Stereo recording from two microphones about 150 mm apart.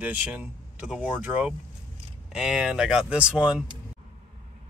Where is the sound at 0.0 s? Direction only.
10° right (ahead or behind).